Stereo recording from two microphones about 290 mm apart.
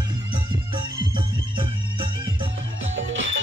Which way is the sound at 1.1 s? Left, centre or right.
Centre.